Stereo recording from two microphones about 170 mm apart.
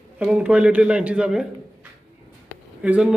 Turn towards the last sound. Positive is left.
turn(degrees=-10)  # may be behind; listen again after turning